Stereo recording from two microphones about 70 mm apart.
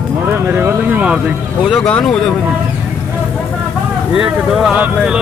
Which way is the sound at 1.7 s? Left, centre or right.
Centre.